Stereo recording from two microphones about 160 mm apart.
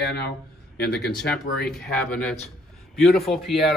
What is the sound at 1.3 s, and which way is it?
Speech, 5° left (ahead or behind).